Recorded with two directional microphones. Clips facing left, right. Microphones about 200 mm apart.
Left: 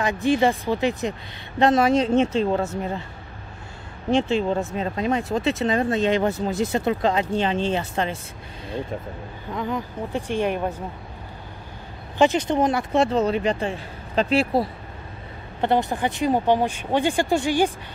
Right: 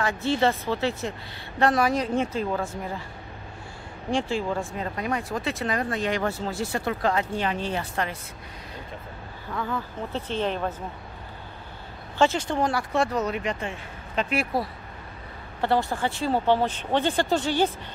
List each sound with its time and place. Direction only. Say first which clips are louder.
0.0 s speech: left 4 dB; 15° left (ahead or behind)
4.1 s speech: left 5 dB; 20° left (ahead or behind)
9.5 s speech: left 3 dB; 20° left (ahead or behind)
12.2 s speech: left 4 dB; 20° left (ahead or behind)